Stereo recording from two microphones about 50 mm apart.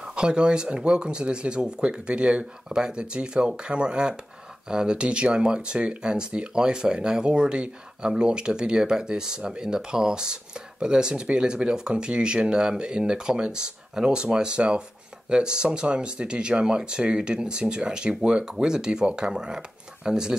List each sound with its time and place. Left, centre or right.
0.0 s speech: centre